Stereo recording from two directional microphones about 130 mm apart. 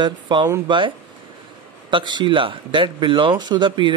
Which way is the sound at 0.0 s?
35° right (ahead or behind).